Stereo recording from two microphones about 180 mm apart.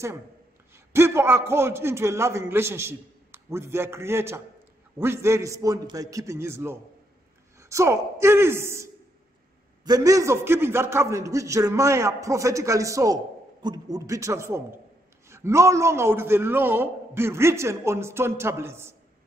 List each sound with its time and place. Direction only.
0.9 s a man's voice: 15° right (ahead or behind)